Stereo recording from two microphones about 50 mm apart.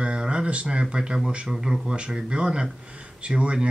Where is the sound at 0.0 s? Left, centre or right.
Centre.